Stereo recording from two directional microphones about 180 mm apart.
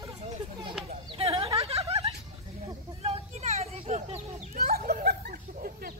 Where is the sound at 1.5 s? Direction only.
35° right (ahead or behind).